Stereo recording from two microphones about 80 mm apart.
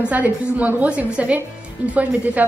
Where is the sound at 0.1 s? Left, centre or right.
Centre.